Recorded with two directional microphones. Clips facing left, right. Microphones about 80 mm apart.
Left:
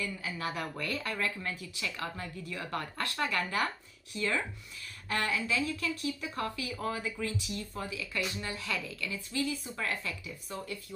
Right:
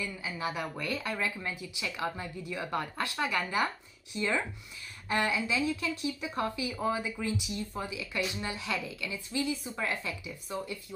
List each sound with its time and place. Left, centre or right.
0.0 s speech: centre